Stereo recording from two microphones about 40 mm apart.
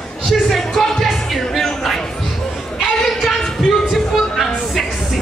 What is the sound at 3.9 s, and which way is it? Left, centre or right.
Music, centre.